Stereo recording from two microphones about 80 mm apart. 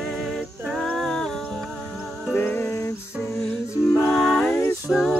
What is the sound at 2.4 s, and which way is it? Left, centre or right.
Music, left.